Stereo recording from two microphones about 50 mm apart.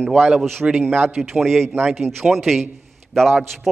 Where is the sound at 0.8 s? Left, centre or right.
Right.